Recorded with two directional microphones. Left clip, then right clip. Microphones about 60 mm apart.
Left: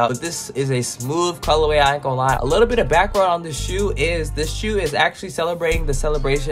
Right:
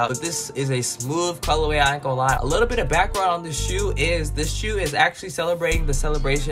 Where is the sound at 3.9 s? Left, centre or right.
Left.